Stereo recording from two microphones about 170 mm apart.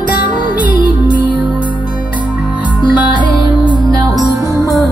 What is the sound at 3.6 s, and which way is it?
Music, 25° left (ahead or behind).